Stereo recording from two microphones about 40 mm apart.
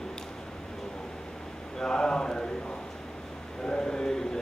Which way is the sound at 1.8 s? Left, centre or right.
Centre.